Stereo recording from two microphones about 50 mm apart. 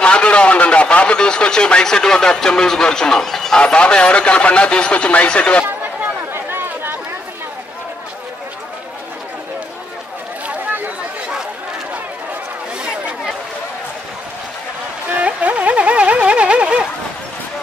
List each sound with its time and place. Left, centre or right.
0.0 s a man's voice: left
3.6 s speech: left
6.3 s a sound: right
15.0 s music: right